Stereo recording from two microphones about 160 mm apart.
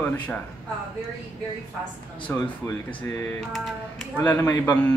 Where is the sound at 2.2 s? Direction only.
10° left (ahead or behind).